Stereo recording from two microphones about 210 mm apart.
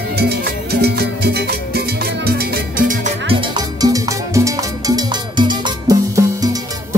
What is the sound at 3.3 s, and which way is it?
Salsa music, 20° right (ahead or behind).